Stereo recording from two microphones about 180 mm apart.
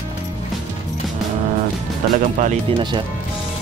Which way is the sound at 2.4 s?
45° right (ahead or behind).